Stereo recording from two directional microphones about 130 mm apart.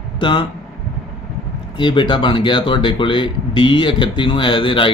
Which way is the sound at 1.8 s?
35° left (ahead or behind).